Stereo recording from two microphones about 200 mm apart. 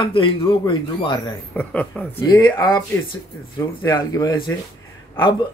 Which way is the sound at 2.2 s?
20° left (ahead or behind).